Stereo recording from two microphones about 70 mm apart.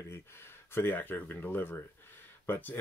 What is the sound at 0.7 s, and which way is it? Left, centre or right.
Speech, left.